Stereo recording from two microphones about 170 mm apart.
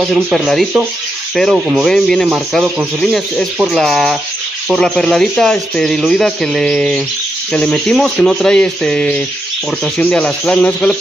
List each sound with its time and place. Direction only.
0.0 s speech: centre (ahead or behind)
9.9 s snake: 5° left (ahead or behind)